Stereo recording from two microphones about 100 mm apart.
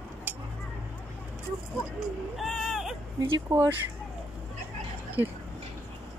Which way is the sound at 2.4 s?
Centre (ahead or behind).